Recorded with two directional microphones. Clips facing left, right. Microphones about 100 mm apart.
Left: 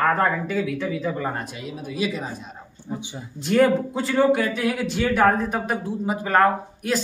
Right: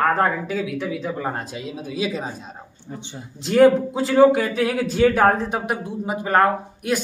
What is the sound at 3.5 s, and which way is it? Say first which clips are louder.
Speech: right 4 dB; 30° right (ahead or behind).